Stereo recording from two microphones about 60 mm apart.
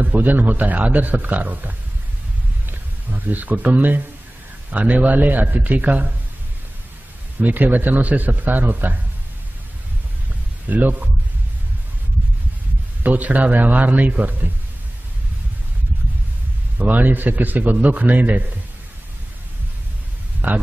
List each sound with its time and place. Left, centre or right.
0.0 s speech: right
3.1 s speech: right
7.3 s speech: right
10.7 s speech: right
13.0 s speech: right
16.7 s speech: right
20.4 s speech: right